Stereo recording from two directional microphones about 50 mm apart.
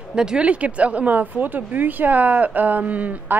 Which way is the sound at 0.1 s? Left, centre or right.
Centre.